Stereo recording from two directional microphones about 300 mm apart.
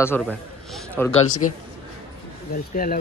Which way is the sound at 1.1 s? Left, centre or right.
Left.